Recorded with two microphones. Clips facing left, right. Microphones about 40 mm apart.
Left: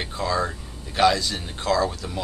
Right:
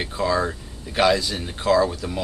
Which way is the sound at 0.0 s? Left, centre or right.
Centre.